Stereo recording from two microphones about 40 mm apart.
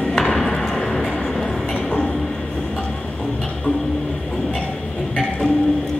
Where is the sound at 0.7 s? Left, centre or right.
Centre.